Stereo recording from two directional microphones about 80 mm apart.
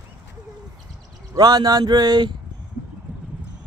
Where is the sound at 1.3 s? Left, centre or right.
Right.